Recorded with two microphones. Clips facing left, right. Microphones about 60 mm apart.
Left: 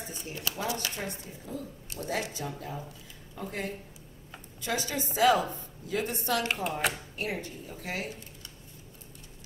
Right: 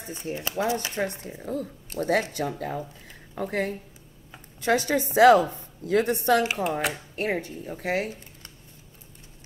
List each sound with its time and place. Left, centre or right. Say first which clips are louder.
0.1 s speech: right 9 dB; right
1.0 s a woman's voice: right 8 dB; right
6.4 s speech: right 5 dB; centre
7.2 s a woman's voice: right 7 dB; right